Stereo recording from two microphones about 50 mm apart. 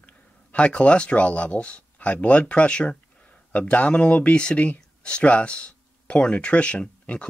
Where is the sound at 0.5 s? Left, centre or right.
Left.